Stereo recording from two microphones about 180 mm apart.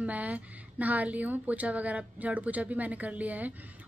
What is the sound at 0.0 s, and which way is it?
A woman's voice, 10° right (ahead or behind).